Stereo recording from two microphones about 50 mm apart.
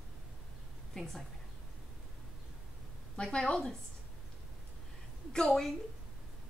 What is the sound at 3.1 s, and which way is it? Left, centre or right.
Speech, centre.